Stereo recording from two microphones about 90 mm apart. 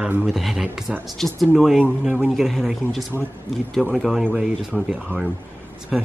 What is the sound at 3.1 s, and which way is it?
Speech, 25° right (ahead or behind).